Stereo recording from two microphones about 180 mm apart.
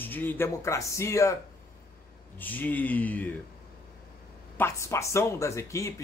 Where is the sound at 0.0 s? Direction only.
10° left (ahead or behind).